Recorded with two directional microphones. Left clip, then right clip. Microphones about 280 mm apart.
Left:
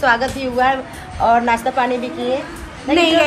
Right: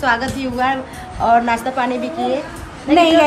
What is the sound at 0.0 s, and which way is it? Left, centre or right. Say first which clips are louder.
A woman's voice: left 2 dB; centre.